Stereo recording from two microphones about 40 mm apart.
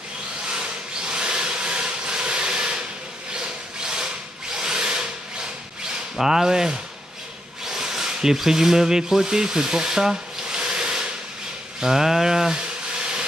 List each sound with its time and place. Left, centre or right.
0.5 s wood: right
4.6 s tools: centre
6.1 s rub: centre
11.8 s a sound: centre